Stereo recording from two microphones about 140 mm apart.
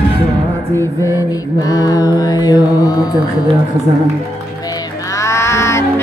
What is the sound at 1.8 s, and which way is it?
Music, 25° left (ahead or behind).